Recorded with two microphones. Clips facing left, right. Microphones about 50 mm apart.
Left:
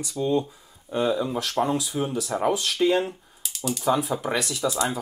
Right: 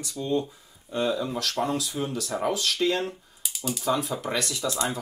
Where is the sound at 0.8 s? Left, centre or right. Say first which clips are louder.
Left 3 dB; centre.